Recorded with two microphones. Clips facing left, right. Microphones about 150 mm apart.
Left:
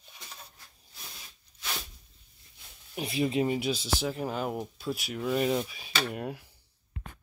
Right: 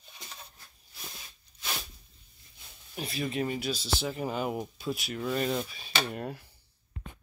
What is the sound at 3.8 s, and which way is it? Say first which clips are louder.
Speech: left 1 dB; centre (ahead or behind).